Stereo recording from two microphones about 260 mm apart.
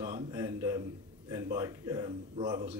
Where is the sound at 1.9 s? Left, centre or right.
Centre.